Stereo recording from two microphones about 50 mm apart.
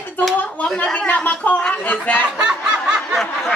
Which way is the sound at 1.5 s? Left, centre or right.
Centre.